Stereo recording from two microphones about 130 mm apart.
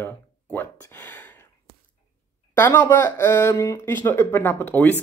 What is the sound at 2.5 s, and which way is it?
Speech, 15° left (ahead or behind).